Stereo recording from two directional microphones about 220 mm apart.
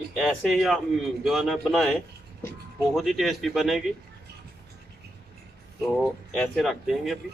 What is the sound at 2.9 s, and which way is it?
Speech, centre (ahead or behind).